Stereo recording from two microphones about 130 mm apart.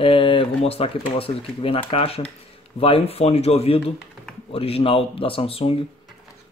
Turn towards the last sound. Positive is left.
turn(degrees=45)  # may be behind; listen again after turning